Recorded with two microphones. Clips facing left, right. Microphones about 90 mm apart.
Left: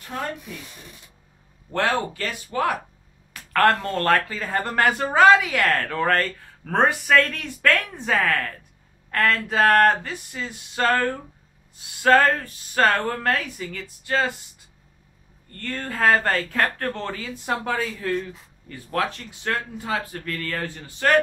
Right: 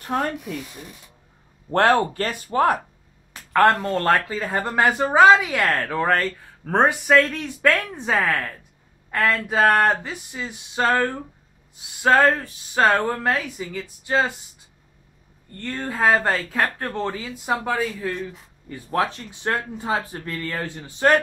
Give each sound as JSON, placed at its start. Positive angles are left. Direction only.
{"t": 0.1, "sound": "speech", "side_deg": -55}
{"t": 1.7, "sound": "speech", "side_deg": -55}
{"t": 3.8, "sound": "speech", "side_deg": -15}
{"t": 15.6, "sound": "speech", "side_deg": -10}
{"t": 18.7, "sound": "speech", "side_deg": -25}